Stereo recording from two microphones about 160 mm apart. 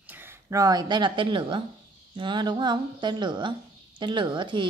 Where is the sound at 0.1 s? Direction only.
15° right (ahead or behind).